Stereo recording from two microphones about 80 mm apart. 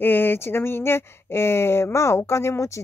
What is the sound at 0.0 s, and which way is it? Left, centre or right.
Speech, left.